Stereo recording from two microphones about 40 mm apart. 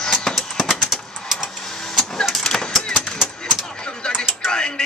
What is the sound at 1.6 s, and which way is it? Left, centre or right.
Printer, centre.